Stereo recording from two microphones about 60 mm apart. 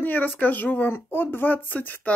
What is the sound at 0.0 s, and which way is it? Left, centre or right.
Speech, left.